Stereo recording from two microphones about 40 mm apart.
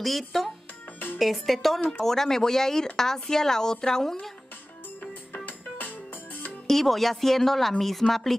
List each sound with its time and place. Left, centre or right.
0.0 s speech: centre
5.0 s music: left
6.7 s speech: centre